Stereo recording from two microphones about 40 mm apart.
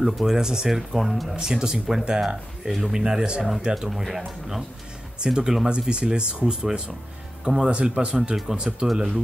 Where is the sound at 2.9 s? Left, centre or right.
Centre.